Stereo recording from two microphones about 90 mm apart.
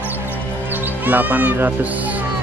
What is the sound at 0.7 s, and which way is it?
Music, 20° right (ahead or behind).